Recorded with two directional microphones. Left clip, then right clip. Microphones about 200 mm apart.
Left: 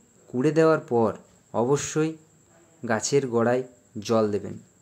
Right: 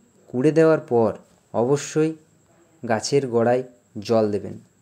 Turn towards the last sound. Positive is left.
turn(degrees=-10)  # may be behind; listen again after turning